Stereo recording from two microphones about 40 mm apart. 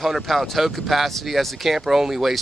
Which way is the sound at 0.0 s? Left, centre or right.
Centre.